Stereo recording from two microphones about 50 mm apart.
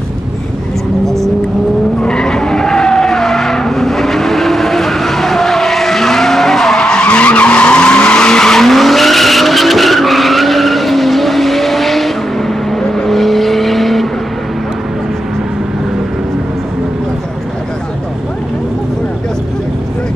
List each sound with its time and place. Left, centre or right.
2.0 s vehicle: centre